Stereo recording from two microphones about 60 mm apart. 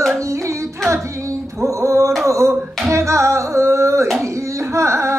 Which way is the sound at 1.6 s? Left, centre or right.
Right.